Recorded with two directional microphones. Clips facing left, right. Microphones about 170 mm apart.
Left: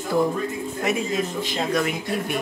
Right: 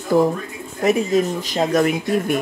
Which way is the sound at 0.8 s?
40° right (ahead or behind).